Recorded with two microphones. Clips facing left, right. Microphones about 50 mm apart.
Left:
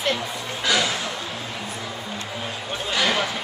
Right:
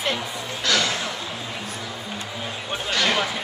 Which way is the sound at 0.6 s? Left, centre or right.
Centre.